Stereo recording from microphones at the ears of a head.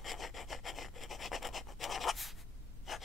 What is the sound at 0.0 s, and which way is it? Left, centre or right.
Rub, left.